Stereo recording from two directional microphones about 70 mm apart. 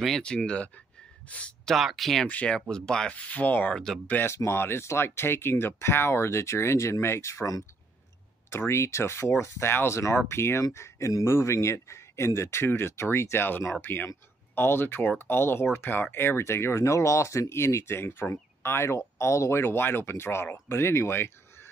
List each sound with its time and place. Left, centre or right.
0.2 s speech: centre
1.7 s speech: centre
2.2 s speech: centre
3.7 s speech: centre
4.3 s speech: left